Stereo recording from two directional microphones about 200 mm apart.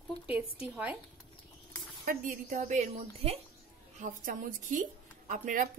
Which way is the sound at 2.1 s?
45° right (ahead or behind).